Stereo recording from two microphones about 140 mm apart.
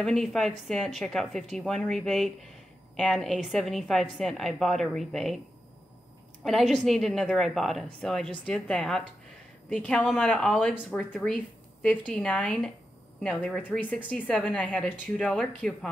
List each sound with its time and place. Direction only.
0.0 s a woman's voice: 5° left (ahead or behind)
6.7 s a woman's voice: centre (ahead or behind)